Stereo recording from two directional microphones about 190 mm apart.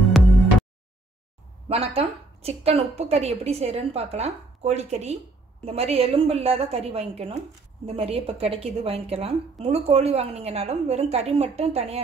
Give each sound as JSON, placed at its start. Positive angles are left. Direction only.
{"t": 1.7, "sound": "a woman's voice", "side_deg": -30}